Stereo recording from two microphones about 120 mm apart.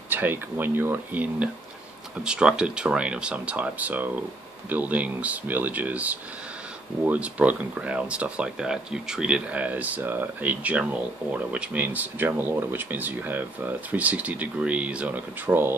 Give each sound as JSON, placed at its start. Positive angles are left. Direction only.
{"t": 0.1, "sound": "speech", "side_deg": -15}